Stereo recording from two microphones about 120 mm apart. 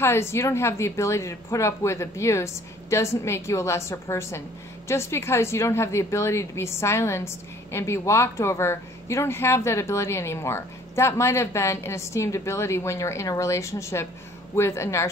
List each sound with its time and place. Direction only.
0.0 s a woman's voice: 20° left (ahead or behind)